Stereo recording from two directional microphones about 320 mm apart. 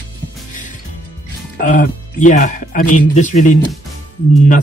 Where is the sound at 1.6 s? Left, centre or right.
Left.